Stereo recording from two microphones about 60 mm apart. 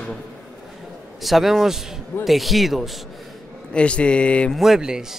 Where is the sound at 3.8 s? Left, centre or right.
Centre.